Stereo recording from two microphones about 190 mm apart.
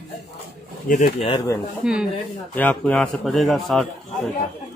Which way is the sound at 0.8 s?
45° left (ahead or behind).